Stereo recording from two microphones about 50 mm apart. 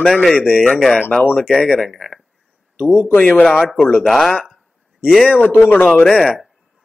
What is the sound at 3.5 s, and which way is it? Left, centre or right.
Speech, centre.